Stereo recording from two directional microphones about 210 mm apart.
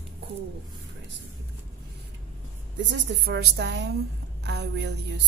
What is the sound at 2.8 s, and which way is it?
A woman's voice, 55° right (ahead or behind).